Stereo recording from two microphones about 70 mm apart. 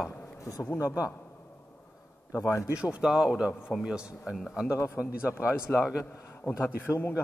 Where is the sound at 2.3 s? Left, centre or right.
Left.